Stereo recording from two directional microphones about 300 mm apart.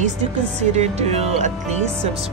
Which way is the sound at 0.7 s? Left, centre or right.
Right.